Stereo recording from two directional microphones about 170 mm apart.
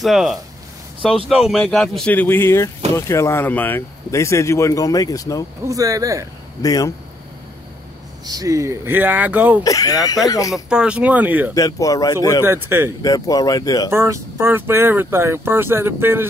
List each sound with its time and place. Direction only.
0.0 s speech: centre (ahead or behind); by 5.4 s 20° left (ahead or behind)
5.6 s speech: 20° right (ahead or behind)
6.6 s speech: 20° left (ahead or behind)
8.3 s speech: 20° right (ahead or behind)
9.6 s speech: 20° left (ahead or behind)
10.5 s speech: 5° right (ahead or behind)
11.5 s speech: 20° left (ahead or behind)
12.4 s speech: 15° right (ahead or behind)
13.0 s speech: 20° left (ahead or behind)
13.8 s speech: 15° right (ahead or behind)